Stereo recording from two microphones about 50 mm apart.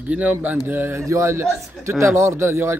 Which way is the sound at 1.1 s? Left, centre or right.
Right.